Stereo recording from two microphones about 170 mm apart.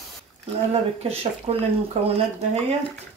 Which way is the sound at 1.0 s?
35° right (ahead or behind).